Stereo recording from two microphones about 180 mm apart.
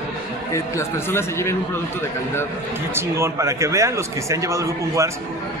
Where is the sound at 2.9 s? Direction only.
15° right (ahead or behind).